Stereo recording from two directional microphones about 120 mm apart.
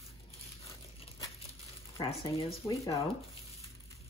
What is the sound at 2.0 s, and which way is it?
Speech, 50° left (ahead or behind).